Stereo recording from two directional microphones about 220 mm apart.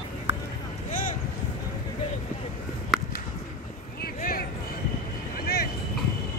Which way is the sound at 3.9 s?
40° left (ahead or behind).